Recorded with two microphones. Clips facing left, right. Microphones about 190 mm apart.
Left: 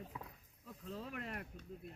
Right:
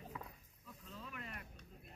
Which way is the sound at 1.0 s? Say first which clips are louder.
Left 5 dB; 65° left (ahead or behind).